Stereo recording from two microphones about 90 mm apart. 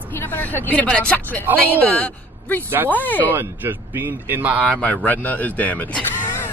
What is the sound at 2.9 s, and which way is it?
Speech, 20° left (ahead or behind).